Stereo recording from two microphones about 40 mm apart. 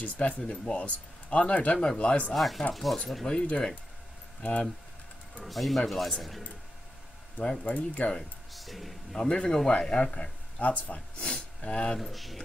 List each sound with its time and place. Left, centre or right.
0.0 s speech: left
1.8 s speech: left
2.3 s speech: centre
3.3 s speech: left
4.4 s speech: left
5.4 s speech: centre
7.6 s speech: left
8.5 s speech: centre
9.1 s speech: left
12.0 s speech: centre